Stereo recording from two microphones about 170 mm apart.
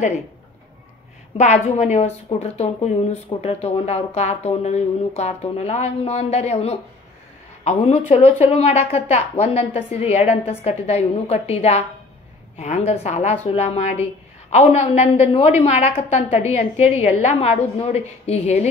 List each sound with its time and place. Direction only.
1.4 s a woman's voice: 45° left (ahead or behind)